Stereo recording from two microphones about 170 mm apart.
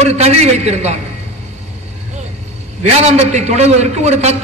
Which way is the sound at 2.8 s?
40° right (ahead or behind).